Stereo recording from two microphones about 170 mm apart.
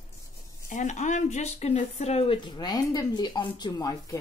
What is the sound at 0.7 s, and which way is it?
Speech, 45° left (ahead or behind).